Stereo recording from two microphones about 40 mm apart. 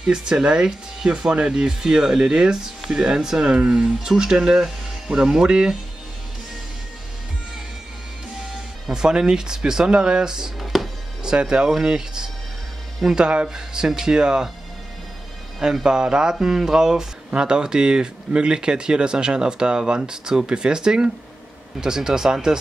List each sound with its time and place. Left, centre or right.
0.0 s speech: centre
8.8 s speech: centre
10.6 s music: centre
11.2 s speech: right
15.6 s speech: centre